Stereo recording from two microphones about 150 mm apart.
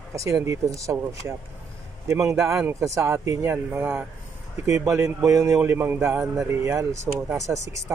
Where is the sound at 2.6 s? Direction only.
15° right (ahead or behind).